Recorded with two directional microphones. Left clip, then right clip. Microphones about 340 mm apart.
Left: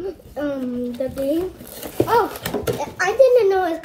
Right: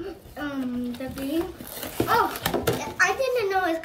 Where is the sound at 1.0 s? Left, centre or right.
Centre.